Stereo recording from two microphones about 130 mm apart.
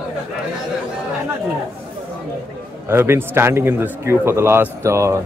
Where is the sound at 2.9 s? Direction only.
20° right (ahead or behind).